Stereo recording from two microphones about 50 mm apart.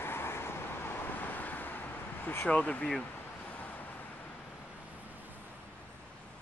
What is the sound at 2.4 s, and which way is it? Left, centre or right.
Speech, left.